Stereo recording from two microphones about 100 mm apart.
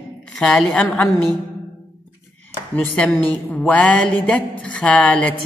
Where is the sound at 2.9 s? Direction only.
15° left (ahead or behind).